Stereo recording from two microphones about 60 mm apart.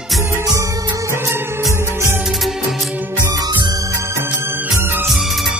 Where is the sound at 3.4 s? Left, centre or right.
Right.